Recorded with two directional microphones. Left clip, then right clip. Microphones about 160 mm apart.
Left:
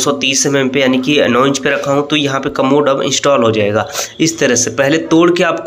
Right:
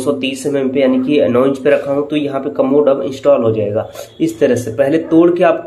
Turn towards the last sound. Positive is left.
turn(degrees=5)  # may be behind; listen again after turning